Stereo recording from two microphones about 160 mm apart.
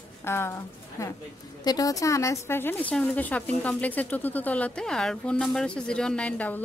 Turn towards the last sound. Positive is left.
turn(degrees=10)  # may be behind; listen again after turning